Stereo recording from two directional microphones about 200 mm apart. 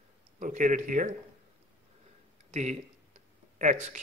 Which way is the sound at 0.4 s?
40° right (ahead or behind).